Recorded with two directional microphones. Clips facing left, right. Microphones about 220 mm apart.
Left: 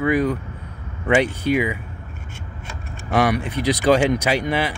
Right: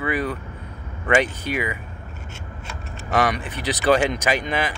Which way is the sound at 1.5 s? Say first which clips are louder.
Left 6 dB; 10° left (ahead or behind).